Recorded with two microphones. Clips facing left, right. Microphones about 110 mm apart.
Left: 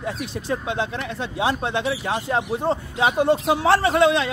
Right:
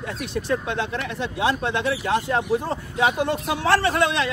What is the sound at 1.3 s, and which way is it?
A man's voice, 25° left (ahead or behind).